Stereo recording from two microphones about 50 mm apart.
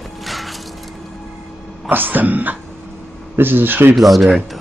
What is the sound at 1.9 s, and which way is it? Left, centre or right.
A man's voice, right.